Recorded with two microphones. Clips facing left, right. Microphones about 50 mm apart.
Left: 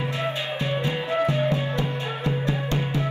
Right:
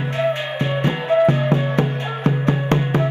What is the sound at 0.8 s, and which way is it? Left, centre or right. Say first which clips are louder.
Music: right 10 dB; right.